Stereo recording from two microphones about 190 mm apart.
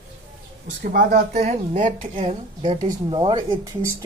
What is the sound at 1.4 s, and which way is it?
Speech, 40° right (ahead or behind).